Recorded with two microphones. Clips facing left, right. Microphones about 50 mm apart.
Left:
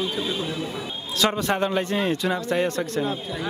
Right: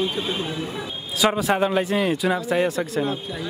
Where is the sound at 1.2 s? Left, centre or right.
Centre.